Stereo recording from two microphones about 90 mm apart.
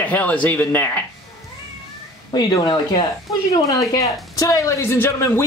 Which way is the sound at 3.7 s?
40° left (ahead or behind).